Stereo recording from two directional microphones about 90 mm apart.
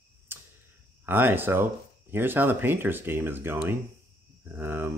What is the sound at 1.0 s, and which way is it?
Speech, 25° right (ahead or behind).